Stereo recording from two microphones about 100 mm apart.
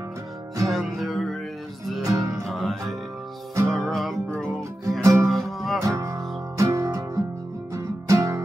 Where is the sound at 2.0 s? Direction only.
35° right (ahead or behind).